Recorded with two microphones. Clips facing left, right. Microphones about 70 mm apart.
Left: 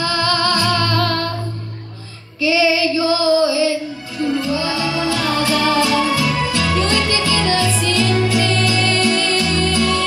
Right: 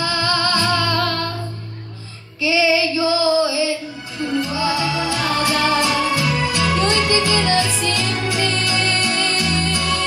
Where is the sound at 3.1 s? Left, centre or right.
Right.